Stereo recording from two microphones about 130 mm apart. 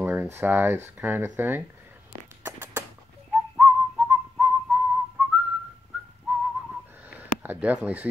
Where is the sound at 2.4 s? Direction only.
15° right (ahead or behind).